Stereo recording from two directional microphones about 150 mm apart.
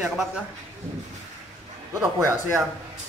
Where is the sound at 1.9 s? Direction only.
20° right (ahead or behind).